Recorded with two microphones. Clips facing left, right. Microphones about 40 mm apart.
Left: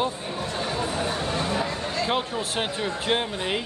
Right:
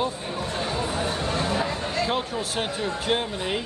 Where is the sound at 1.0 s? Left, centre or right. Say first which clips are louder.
Even; right.